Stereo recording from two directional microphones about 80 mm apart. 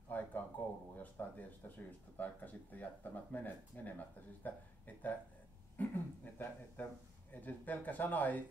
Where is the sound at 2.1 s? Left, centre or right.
Centre.